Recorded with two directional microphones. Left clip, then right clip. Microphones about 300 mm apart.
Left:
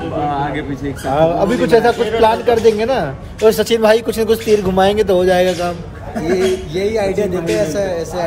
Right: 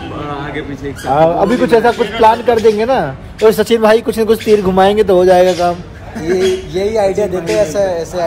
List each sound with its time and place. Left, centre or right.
0.3 s a sound: centre
1.1 s a man's voice: centre
5.3 s a man's voice: centre